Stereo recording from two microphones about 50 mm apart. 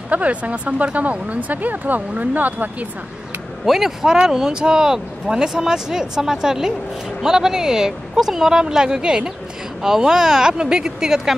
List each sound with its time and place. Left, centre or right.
0.1 s speech: right
3.6 s speech: centre